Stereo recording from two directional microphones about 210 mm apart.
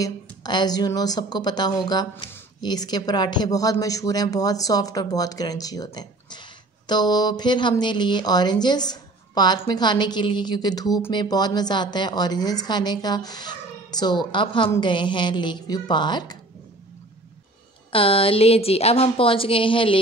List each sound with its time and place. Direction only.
0.0 s speech: 20° left (ahead or behind)
17.9 s speech: 25° left (ahead or behind)